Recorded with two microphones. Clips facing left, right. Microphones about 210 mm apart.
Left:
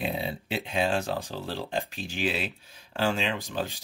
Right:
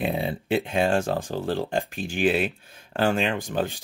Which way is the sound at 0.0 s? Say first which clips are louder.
Right 5 dB; 50° right (ahead or behind).